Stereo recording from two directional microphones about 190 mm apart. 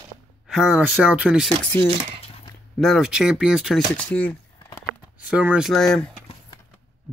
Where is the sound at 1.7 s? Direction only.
10° left (ahead or behind).